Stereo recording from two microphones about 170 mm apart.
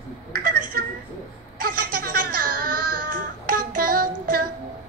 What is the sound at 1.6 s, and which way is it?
Baby cry, 60° right (ahead or behind).